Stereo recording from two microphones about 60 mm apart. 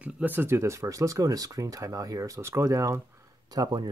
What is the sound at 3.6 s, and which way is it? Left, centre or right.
Speech, right.